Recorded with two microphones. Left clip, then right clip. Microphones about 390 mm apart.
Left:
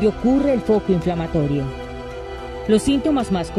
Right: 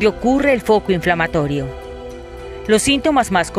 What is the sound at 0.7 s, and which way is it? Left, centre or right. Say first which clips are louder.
Speech: right 4 dB; right.